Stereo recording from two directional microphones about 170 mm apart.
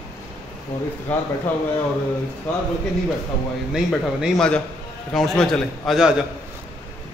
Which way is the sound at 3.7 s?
Centre (ahead or behind).